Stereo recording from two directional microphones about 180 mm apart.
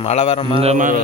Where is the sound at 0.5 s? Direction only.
40° right (ahead or behind).